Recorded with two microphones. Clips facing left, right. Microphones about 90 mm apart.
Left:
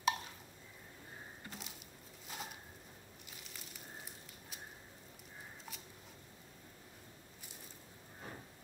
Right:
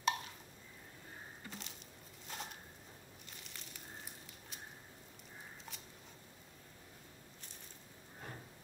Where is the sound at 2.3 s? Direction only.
5° left (ahead or behind).